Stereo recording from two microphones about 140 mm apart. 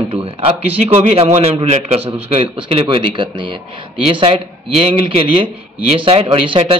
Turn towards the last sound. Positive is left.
turn(degrees=-40)  # may be behind; listen again after turning